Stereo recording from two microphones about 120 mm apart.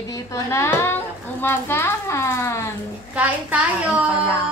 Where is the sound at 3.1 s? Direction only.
10° right (ahead or behind).